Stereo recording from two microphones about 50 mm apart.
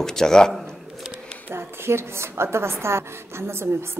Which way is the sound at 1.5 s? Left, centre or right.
Right.